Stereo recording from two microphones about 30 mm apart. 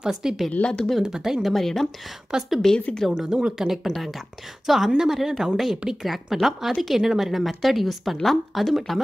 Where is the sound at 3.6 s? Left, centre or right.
Centre.